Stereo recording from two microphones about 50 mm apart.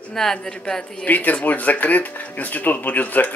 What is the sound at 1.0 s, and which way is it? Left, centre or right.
Speech, left.